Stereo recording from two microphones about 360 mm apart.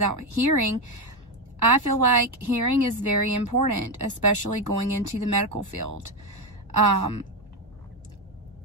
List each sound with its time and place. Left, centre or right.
0.0 s speech: right